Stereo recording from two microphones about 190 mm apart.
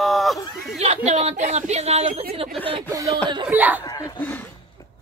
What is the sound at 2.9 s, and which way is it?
Speech, 15° right (ahead or behind).